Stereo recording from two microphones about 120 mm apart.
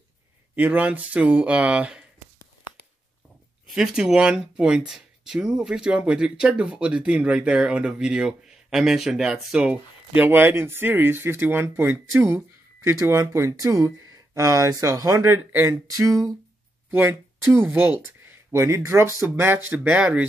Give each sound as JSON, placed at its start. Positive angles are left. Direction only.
{"t": 0.6, "sound": "speech", "side_deg": -10}
{"t": 3.6, "sound": "speech", "side_deg": -5}